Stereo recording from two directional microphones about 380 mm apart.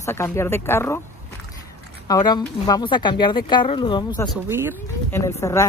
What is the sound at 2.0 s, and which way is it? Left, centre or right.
Speech, centre.